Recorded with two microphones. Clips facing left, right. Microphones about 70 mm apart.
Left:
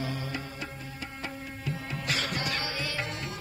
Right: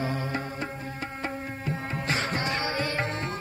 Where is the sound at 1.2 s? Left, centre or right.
Right.